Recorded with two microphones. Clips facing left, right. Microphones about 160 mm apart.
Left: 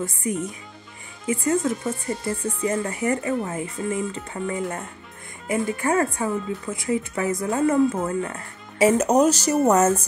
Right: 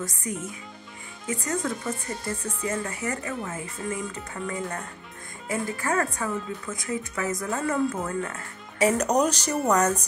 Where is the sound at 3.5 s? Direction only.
25° left (ahead or behind).